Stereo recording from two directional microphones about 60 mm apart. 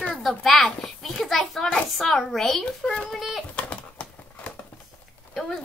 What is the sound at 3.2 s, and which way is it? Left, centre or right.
Speech, centre.